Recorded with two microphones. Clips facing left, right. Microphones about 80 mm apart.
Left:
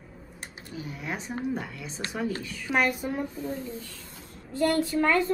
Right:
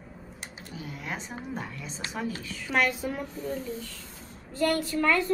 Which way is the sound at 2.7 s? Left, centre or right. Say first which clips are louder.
Left 1 dB; centre.